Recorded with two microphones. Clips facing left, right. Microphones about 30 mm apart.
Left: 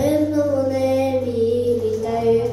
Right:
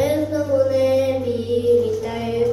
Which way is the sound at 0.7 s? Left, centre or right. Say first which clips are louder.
Right 1 dB; centre.